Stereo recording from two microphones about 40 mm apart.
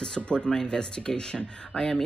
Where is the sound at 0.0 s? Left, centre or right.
Left.